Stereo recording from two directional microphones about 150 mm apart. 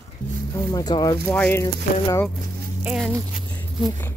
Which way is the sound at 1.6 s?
20° left (ahead or behind).